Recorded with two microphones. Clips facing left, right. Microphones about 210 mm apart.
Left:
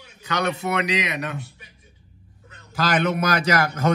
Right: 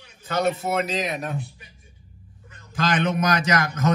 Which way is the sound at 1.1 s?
85° left.